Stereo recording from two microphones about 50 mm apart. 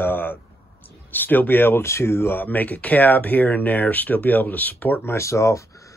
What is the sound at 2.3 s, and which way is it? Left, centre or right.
Speech, left.